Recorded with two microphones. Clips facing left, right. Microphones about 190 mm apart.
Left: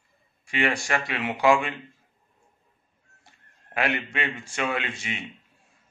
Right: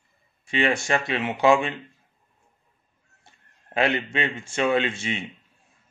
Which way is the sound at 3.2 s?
25° right (ahead or behind).